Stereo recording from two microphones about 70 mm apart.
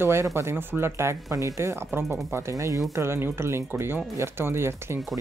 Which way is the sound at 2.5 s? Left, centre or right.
Right.